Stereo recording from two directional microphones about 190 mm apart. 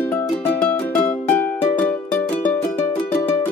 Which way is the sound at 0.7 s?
10° left (ahead or behind).